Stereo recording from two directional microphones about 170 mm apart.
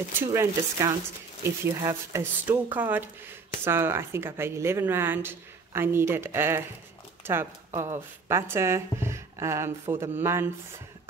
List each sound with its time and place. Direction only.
0.3 s speech: 15° right (ahead or behind)